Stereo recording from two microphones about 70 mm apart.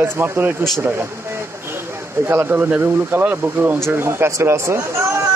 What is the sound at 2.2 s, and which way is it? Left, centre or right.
Speech, right.